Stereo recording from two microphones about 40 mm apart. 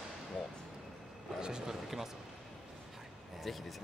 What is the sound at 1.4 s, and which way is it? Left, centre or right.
Speech, centre.